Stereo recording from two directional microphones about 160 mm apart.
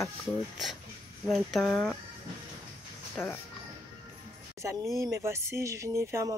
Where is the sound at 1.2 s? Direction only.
Centre (ahead or behind).